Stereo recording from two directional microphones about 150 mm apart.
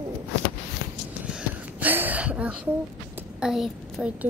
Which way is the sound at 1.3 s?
10° right (ahead or behind).